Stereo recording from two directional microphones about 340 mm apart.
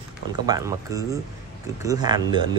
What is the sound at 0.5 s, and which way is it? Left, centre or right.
Speech, centre.